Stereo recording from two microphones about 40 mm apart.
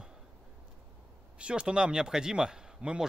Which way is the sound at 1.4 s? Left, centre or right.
Right.